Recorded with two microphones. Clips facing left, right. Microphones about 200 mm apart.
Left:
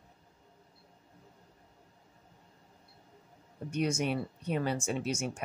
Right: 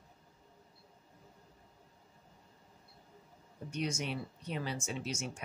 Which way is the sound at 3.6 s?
55° left (ahead or behind).